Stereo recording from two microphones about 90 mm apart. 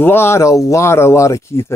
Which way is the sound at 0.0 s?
25° left (ahead or behind).